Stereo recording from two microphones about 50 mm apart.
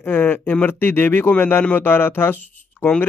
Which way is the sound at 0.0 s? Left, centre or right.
Left.